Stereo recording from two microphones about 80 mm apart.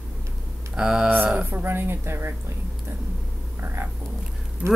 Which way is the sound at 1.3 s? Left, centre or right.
Right.